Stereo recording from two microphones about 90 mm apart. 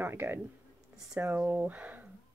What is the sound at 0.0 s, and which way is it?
A woman's voice, 25° right (ahead or behind).